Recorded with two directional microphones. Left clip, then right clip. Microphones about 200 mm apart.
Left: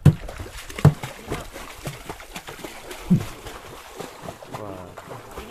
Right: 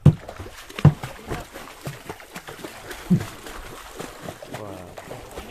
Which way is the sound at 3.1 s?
15° right (ahead or behind).